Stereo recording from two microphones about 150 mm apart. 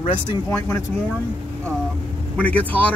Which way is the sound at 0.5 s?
15° left (ahead or behind).